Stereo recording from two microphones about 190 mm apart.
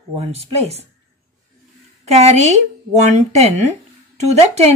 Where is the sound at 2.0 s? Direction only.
35° right (ahead or behind).